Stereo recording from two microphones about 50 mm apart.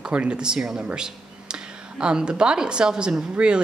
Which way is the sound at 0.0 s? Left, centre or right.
Right.